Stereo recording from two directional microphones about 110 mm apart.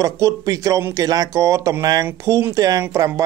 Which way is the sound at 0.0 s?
30° right (ahead or behind).